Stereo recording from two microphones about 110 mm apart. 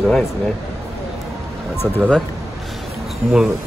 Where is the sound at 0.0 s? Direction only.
Centre (ahead or behind).